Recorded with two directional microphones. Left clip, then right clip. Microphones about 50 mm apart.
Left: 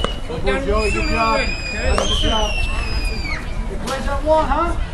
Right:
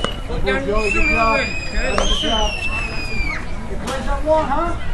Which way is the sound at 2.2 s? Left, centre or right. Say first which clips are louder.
Right 1 dB; left.